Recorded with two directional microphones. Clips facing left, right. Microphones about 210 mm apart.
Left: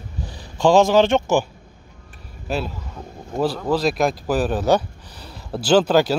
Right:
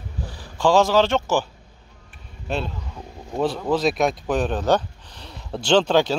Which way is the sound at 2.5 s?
5° left (ahead or behind).